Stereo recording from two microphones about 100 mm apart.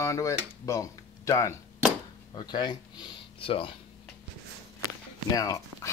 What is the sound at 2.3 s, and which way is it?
Speech, 45° left (ahead or behind).